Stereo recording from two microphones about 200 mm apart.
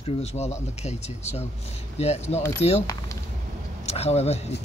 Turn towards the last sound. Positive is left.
turn(degrees=30)  # may be behind; listen again after turning